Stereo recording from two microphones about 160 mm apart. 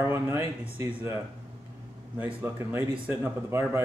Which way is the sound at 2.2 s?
15° right (ahead or behind).